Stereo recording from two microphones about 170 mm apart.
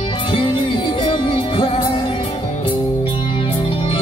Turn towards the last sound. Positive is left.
turn(degrees=30)  # may be behind; listen again after turning